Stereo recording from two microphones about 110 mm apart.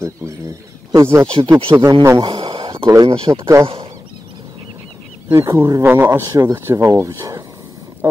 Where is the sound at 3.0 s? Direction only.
55° right (ahead or behind).